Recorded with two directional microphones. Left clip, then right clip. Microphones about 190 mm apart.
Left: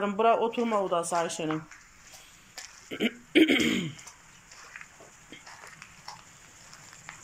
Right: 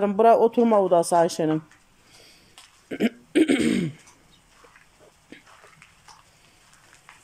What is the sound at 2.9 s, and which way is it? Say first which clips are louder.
Throat clearing: right 2 dB; 20° right (ahead or behind).